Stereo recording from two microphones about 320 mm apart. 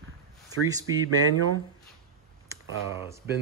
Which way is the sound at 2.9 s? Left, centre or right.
Centre.